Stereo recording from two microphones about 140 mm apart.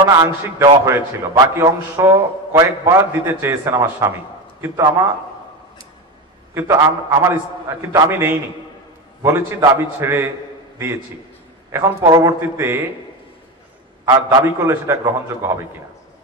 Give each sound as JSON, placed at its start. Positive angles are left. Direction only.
{"t": 0.0, "sound": "a man's voice", "side_deg": -20}
{"t": 6.5, "sound": "a man's voice", "side_deg": -20}
{"t": 11.7, "sound": "a man's voice", "side_deg": -20}
{"t": 14.0, "sound": "a man's voice", "side_deg": -20}